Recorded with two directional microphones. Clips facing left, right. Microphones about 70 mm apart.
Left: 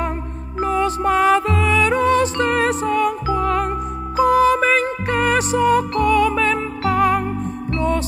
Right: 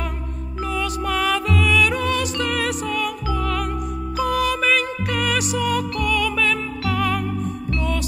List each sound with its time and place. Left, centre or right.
0.7 s music: left